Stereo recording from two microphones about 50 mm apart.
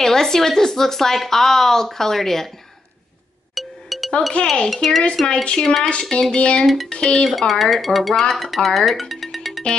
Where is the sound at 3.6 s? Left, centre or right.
Centre.